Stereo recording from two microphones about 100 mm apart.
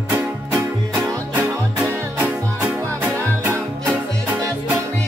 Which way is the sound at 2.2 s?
15° right (ahead or behind).